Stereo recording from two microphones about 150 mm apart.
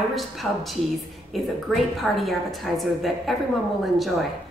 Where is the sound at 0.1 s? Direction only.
Centre (ahead or behind).